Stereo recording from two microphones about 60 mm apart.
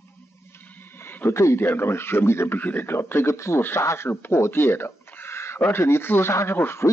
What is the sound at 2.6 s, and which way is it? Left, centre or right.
Speech, left.